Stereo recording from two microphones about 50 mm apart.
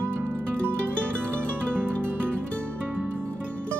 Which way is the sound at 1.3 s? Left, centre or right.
Right.